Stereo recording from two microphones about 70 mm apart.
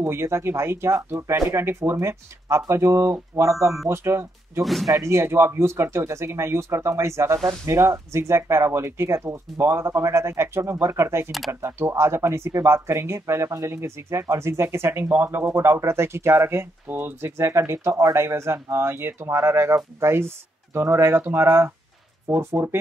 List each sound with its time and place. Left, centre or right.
0.0 s speech: right
4.8 s speech: right